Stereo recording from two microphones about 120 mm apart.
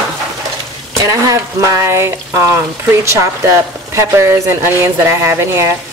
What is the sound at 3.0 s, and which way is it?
Speech, 25° right (ahead or behind).